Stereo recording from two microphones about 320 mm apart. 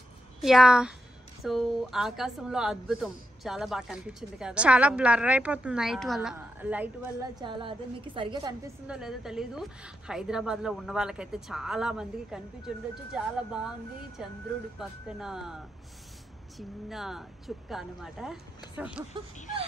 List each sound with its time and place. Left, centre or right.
0.4 s speech: centre